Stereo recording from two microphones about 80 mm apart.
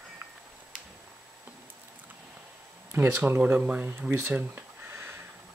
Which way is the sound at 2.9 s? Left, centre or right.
Right.